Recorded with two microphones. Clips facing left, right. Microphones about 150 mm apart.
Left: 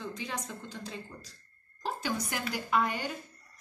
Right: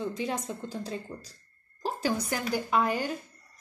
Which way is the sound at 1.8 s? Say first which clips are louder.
Right 4 dB; 35° right (ahead or behind).